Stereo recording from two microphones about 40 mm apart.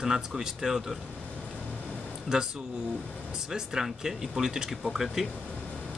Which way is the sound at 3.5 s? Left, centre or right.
Centre.